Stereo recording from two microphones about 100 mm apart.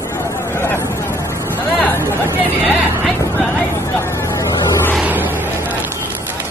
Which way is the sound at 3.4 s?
20° left (ahead or behind).